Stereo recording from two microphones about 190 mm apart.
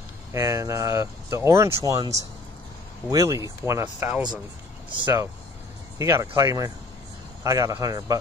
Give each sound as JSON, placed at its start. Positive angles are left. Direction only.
{"t": 0.3, "sound": "speech", "side_deg": -15}